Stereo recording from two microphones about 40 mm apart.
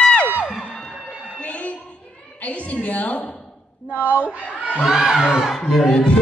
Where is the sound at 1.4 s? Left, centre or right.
Left.